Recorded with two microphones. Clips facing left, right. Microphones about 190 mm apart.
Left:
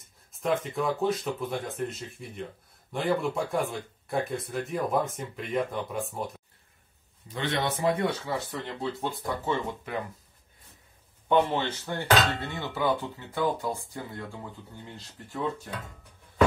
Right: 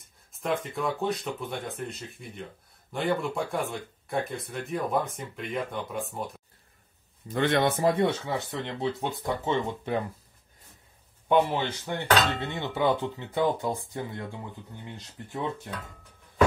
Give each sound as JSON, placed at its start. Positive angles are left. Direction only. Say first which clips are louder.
{"t": 0.3, "sound": "speech", "louder": "left 2 dB", "side_deg": 0}
{"t": 7.2, "sound": "a man's voice", "louder": "right 5 dB", "side_deg": -50}
{"t": 8.3, "sound": "dishes", "louder": "right 1 dB", "side_deg": -20}
{"t": 11.2, "sound": "dishes", "louder": "right 1 dB", "side_deg": -10}